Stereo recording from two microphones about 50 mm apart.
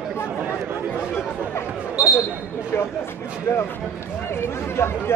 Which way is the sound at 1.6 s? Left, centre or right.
Left.